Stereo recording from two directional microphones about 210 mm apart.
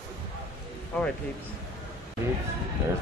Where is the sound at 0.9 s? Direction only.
5° left (ahead or behind).